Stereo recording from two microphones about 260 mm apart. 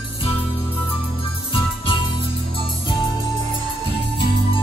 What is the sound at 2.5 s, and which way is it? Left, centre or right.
Music, centre.